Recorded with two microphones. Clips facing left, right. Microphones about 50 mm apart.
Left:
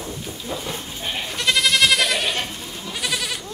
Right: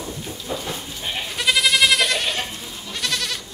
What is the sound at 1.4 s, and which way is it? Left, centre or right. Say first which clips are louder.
Goat: even; centre.